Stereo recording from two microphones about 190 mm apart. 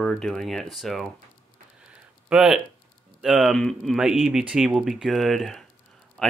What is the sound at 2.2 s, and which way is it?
Speech, 5° right (ahead or behind).